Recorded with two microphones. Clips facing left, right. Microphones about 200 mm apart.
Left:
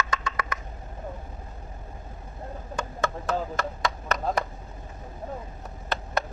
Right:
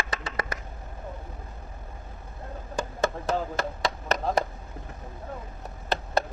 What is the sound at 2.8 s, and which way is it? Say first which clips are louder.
Chopping: right 3 dB; 35° right (ahead or behind).